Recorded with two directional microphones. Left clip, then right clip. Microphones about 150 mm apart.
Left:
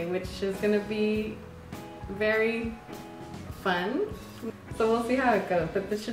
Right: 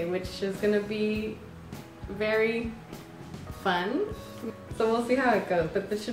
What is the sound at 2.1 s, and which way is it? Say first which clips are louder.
Speech: even; 15° right (ahead or behind).